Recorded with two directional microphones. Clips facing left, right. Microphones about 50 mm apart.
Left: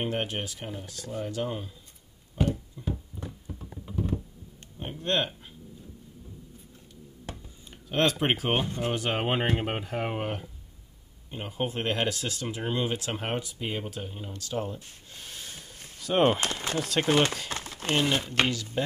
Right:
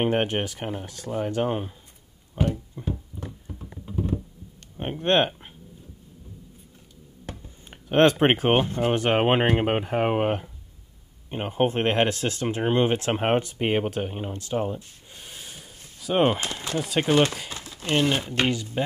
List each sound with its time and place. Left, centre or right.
0.0 s speech: right
2.4 s a sound: right
3.3 s a sound: centre
4.7 s speech: right
7.7 s speech: right
8.6 s speech: centre
8.9 s speech: right
15.1 s snort: centre
16.0 s speech: centre
17.5 s a sound: left
17.9 s speech: centre
18.4 s speech: right